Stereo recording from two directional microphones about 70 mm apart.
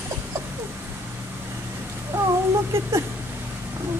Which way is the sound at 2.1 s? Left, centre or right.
Right.